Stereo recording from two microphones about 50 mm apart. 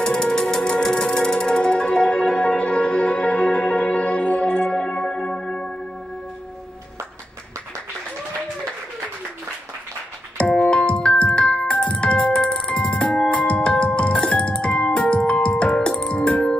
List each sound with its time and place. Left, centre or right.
0.0 s music: centre
10.5 s music: centre